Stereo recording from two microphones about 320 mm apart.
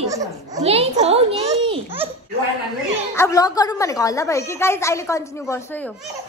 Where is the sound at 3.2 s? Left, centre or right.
Centre.